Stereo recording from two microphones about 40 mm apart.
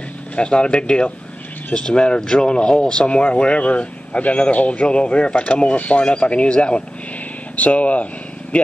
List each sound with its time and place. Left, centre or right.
0.4 s speech: left